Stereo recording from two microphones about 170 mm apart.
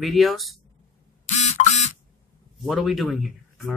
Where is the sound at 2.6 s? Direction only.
Centre (ahead or behind).